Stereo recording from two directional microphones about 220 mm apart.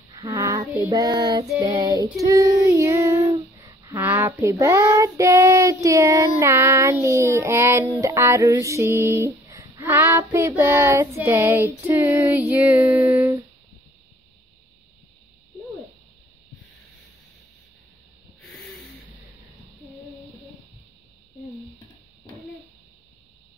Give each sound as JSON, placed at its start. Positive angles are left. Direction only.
{"t": 0.1, "sound": "child singing", "side_deg": -15}